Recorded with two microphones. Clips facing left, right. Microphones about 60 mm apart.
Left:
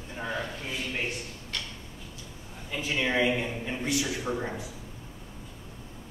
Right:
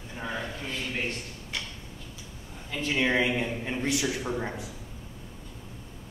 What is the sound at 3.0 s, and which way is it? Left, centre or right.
Speech, centre.